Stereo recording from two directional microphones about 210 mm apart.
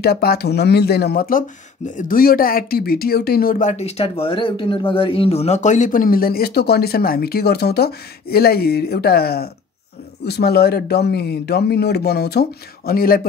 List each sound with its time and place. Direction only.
0.0 s speech: 50° left (ahead or behind)